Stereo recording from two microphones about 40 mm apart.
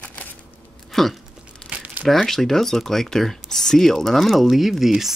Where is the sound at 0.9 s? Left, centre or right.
Centre.